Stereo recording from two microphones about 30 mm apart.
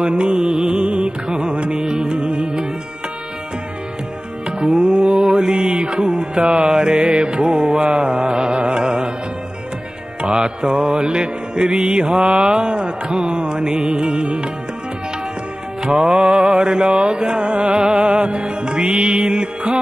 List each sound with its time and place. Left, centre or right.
0.2 s music: right
0.5 s music: right
0.8 s music: right
4.7 s music: right
10.3 s mantra: right
15.8 s music: right
16.3 s mantra: right
17.1 s music: right